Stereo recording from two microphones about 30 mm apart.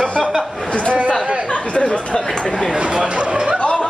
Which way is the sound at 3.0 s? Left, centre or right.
Right.